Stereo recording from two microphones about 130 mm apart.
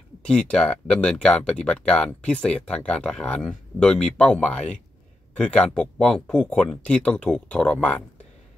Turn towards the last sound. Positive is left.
turn(degrees=10)  # may be behind; listen again after turning